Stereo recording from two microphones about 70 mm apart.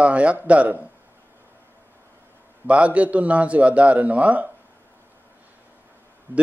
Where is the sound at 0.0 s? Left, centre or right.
Centre.